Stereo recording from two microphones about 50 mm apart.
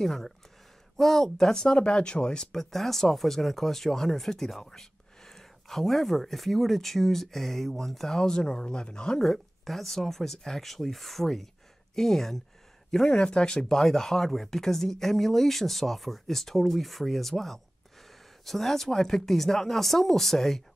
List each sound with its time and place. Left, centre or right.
0.0 s speech: centre
2.5 s speech: centre
9.2 s speech: centre